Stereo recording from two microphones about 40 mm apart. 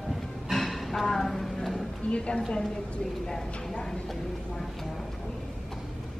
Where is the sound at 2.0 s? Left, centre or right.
Left.